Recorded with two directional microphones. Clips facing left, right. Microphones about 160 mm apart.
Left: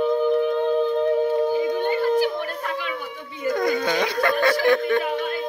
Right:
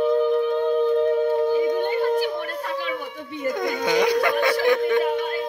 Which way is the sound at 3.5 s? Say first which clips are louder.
Left 1 dB; 20° right (ahead or behind).